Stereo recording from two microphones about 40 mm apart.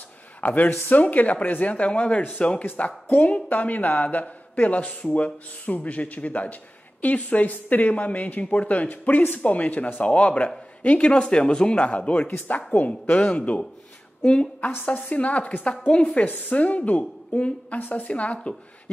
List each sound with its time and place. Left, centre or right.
0.4 s a man's voice: left
12.3 s a woman's voice: left
13.1 s a man's voice: left
15.1 s speech: left
17.7 s a woman's voice: left
18.0 s speech: left